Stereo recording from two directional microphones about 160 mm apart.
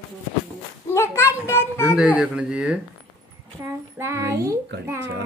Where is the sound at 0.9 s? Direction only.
15° left (ahead or behind).